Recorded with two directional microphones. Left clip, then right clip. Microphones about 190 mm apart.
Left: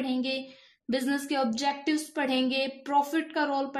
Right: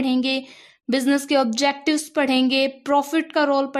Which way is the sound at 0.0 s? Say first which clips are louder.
Right 8 dB; 50° right (ahead or behind).